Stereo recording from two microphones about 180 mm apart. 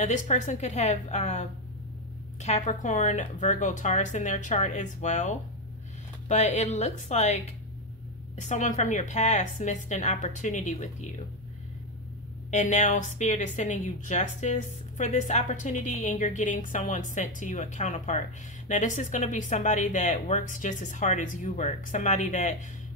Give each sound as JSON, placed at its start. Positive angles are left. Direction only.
{"t": 0.0, "sound": "a woman's voice", "side_deg": 40}
{"t": 12.4, "sound": "a woman's voice", "side_deg": 40}